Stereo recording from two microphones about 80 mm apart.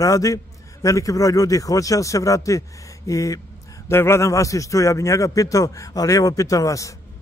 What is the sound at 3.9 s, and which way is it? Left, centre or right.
A man's voice, left.